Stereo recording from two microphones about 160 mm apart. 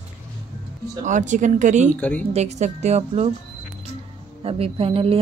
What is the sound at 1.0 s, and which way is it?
A woman's voice, 50° right (ahead or behind).